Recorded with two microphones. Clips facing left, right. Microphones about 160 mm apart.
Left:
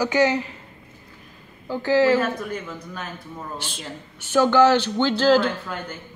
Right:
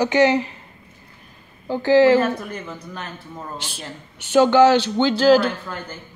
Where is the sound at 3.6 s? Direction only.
10° right (ahead or behind).